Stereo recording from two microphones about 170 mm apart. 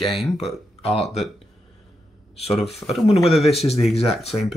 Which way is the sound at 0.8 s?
40° left (ahead or behind).